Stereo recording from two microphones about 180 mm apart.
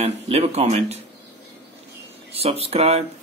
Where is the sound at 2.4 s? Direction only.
35° right (ahead or behind).